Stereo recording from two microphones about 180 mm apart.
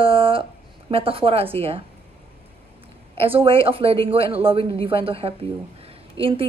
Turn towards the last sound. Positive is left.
turn(degrees=-30)  # may be behind; listen again after turning